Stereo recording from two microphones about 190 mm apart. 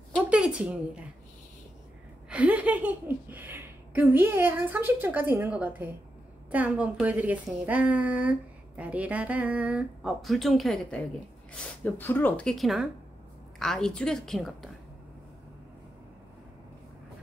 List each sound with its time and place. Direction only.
0.3 s a woman's voice: 5° right (ahead or behind)
2.2 s a woman's voice: 5° right (ahead or behind)